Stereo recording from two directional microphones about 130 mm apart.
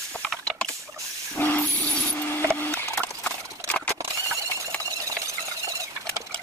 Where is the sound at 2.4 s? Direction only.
10° left (ahead or behind).